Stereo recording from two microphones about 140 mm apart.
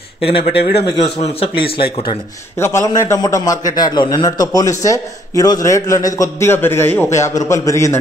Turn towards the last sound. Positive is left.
turn(degrees=20)  # may be behind; listen again after turning